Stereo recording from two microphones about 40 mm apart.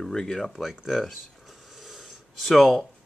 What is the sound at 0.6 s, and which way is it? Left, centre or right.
Speech, centre.